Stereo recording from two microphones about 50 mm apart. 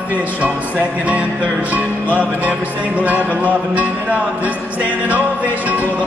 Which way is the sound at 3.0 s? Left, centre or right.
Right.